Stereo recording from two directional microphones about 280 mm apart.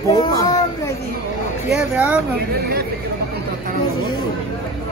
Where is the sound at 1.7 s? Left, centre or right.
Centre.